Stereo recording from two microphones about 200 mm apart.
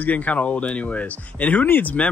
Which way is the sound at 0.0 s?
10° left (ahead or behind).